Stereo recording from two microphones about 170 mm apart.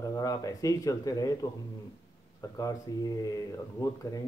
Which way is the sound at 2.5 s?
20° left (ahead or behind).